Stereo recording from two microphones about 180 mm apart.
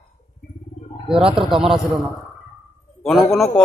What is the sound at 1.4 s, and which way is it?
Speech, 5° right (ahead or behind).